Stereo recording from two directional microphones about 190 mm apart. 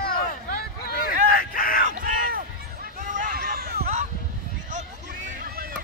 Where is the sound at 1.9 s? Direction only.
45° right (ahead or behind).